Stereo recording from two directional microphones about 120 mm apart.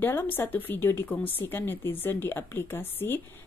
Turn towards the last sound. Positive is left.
turn(degrees=15)  # may be behind; listen again after turning